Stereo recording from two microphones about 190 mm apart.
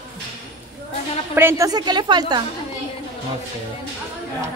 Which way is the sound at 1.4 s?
15° right (ahead or behind).